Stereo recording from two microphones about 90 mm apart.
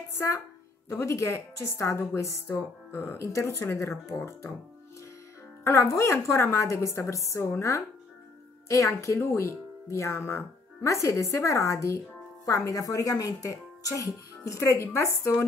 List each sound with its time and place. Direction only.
0.1 s speech: 30° left (ahead or behind)
5.6 s speech: 35° left (ahead or behind)